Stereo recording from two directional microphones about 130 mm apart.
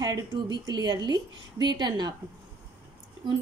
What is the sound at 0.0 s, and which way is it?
Speech, 35° right (ahead or behind).